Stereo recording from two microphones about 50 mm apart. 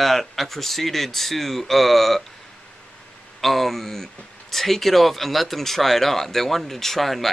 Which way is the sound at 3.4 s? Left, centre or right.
Centre.